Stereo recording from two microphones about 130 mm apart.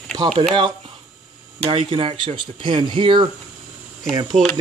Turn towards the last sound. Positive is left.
turn(degrees=5)  # may be behind; listen again after turning